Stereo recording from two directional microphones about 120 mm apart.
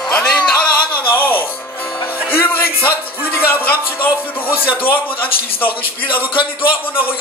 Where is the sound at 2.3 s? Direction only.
15° left (ahead or behind).